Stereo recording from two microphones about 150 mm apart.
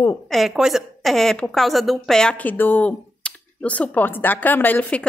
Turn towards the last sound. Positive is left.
turn(degrees=10)  # may be behind; listen again after turning